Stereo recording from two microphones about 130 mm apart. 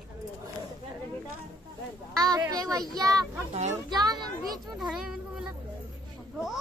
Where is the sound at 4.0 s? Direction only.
30° right (ahead or behind).